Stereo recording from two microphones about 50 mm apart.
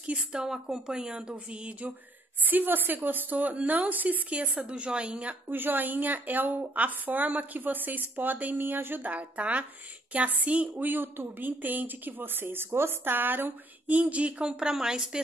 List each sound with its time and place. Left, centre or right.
0.0 s a woman's voice: centre
1.5 s a woman's voice: right
2.4 s speech: right
5.5 s speech: right
9.0 s a woman's voice: right
10.9 s speech: right; by 15.2 s centre